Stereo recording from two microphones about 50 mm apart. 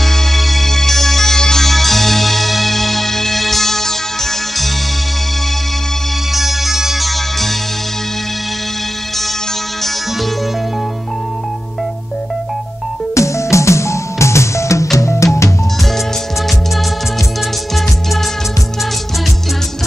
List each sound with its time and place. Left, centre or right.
0.0 s music: centre
6.3 s music: centre
13.1 s music: left